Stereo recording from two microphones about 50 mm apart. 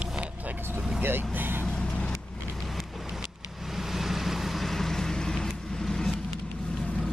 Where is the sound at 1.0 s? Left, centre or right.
Right.